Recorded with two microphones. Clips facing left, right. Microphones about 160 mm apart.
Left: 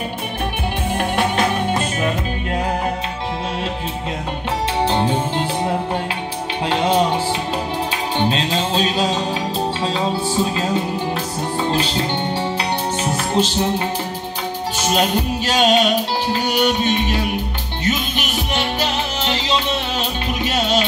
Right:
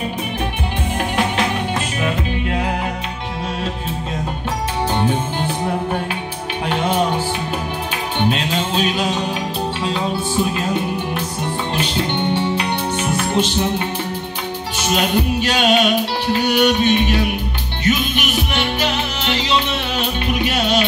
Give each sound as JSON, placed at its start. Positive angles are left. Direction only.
{"t": 1.8, "sound": "music", "side_deg": 40}
{"t": 4.8, "sound": "music", "side_deg": 30}
{"t": 6.7, "sound": "music", "side_deg": 25}
{"t": 8.2, "sound": "music", "side_deg": 35}
{"t": 11.7, "sound": "music", "side_deg": 35}